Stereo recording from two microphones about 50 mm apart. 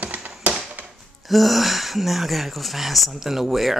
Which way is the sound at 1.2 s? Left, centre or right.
Centre.